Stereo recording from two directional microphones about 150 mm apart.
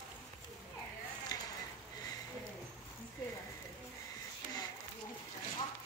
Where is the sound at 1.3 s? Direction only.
25° left (ahead or behind).